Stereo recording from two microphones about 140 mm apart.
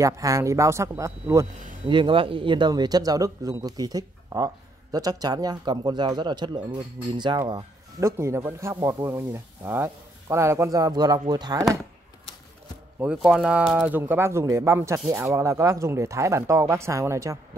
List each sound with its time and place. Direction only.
0.0 s speech: 25° right (ahead or behind)
1.9 s speech: 35° right (ahead or behind)
8.0 s speech: 20° right (ahead or behind)
13.0 s speech: 5° right (ahead or behind)